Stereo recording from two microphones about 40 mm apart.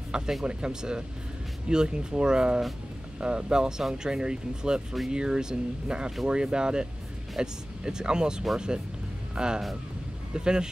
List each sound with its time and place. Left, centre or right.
0.1 s speech: right